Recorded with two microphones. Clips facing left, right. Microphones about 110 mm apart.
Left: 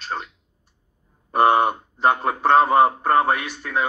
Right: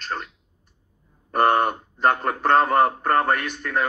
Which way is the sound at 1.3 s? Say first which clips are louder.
Left 2 dB; 10° left (ahead or behind).